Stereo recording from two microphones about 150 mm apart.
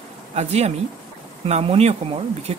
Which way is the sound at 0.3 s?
45° right (ahead or behind).